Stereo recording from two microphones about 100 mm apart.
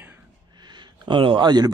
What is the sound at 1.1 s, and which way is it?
Speech, 55° right (ahead or behind).